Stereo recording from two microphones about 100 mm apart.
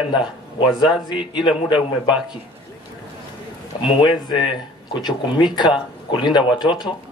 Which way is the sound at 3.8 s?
50° left (ahead or behind).